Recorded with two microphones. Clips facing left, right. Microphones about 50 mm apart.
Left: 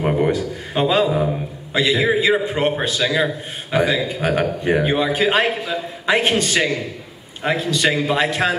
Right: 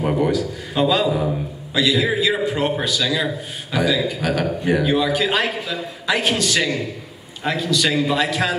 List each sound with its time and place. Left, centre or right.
0.0 s a man's voice: left